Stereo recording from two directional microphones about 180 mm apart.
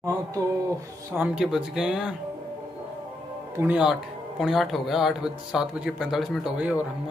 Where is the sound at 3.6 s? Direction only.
5° right (ahead or behind).